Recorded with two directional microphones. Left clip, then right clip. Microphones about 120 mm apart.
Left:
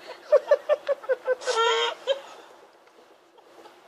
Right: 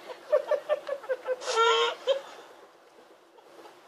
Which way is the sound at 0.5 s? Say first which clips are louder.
Left 6 dB; 25° left (ahead or behind).